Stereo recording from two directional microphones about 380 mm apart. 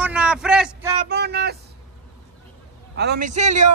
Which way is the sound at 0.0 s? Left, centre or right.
Centre.